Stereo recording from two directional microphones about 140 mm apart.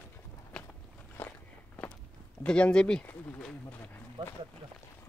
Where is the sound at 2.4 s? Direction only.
5° left (ahead or behind).